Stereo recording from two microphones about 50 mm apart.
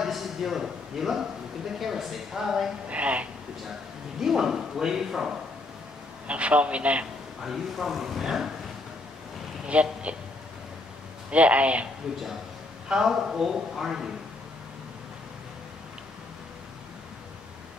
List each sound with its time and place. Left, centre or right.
0.0 s a man's voice: centre
2.9 s a man's voice: right
4.2 s a man's voice: centre
6.2 s a man's voice: right
7.4 s speech: centre
9.7 s a man's voice: right
11.2 s a man's voice: right
12.8 s a man's voice: centre